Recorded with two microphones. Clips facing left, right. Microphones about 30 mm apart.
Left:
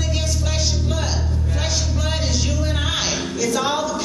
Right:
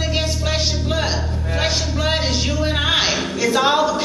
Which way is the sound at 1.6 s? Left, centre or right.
Right.